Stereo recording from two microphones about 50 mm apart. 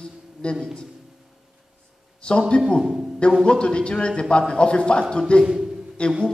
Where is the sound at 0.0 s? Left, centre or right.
Left.